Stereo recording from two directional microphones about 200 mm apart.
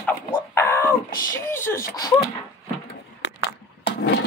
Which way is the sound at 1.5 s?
10° left (ahead or behind).